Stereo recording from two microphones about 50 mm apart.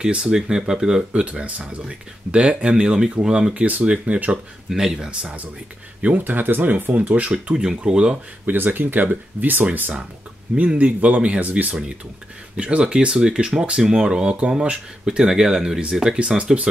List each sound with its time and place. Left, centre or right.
0.0 s speech: centre
3.6 s speech: right
4.6 s speech: centre
5.2 s speech: right
7.1 s speech: right
7.5 s speech: centre
8.5 s speech: right
10.5 s speech: right